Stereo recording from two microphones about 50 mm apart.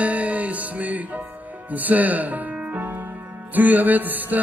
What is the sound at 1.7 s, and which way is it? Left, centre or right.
Music, right.